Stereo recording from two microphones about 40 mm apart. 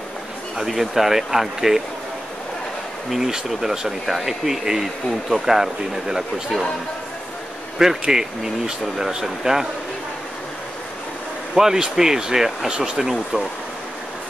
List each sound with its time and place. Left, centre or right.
0.6 s speech: centre
3.1 s speech: centre
7.8 s speech: centre
11.5 s speech: centre